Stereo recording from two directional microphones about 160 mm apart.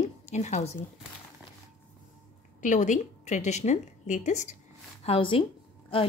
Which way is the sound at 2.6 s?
50° left (ahead or behind).